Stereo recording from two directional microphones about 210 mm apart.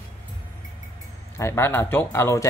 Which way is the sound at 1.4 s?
10° left (ahead or behind).